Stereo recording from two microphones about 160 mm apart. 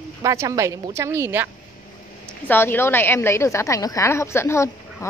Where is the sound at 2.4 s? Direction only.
15° left (ahead or behind).